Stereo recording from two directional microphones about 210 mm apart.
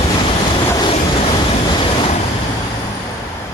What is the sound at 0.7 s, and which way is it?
Vehicle, 25° left (ahead or behind).